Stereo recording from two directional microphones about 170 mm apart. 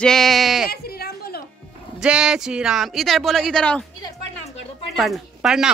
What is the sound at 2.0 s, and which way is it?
Speech, 5° right (ahead or behind).